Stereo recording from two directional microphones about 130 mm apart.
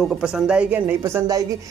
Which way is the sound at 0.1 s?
5° right (ahead or behind).